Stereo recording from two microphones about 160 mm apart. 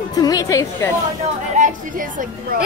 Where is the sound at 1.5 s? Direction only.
55° right (ahead or behind).